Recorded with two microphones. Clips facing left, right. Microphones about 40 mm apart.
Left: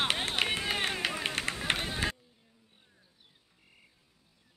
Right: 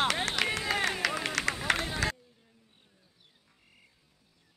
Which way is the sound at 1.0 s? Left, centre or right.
Right.